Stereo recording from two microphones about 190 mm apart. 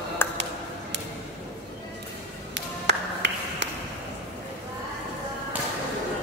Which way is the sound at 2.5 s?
65° right (ahead or behind).